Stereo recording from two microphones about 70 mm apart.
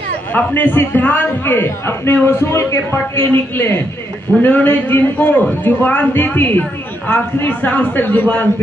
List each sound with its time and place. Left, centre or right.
0.3 s a man's voice: left